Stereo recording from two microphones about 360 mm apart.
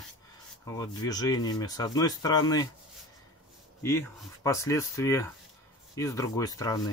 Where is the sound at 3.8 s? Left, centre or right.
Centre.